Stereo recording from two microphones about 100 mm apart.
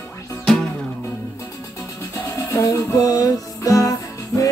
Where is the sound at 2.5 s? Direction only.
35° left (ahead or behind).